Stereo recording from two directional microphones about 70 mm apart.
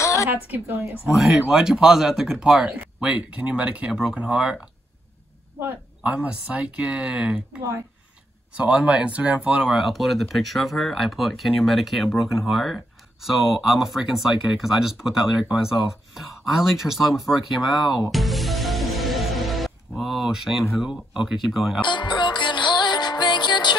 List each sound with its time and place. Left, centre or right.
0.0 s a sound: left
0.3 s speech: right
1.0 s speech: centre
3.0 s speech: centre
5.6 s speech: right
6.1 s speech: centre
9.7 s speech: centre
18.1 s music: centre
20.7 s speech: centre
21.8 s music: left